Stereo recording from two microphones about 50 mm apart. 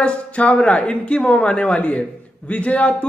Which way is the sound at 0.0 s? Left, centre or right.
Left.